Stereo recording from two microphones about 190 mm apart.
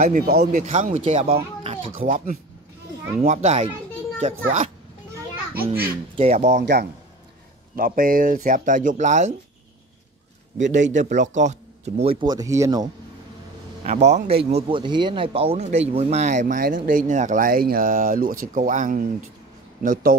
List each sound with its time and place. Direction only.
0.0 s speech: 50° right (ahead or behind)
0.6 s speech: 40° right (ahead or behind)
1.6 s a sound: 30° right (ahead or behind)
2.0 s speech: 45° right (ahead or behind)
6.1 s speech: 35° right (ahead or behind)
6.6 s a man's voice: 60° right (ahead or behind)
7.7 s speech: 45° right (ahead or behind)
10.6 s speech: 40° right (ahead or behind); by 12.9 s 20° right (ahead or behind)
13.8 s speech: 35° right (ahead or behind)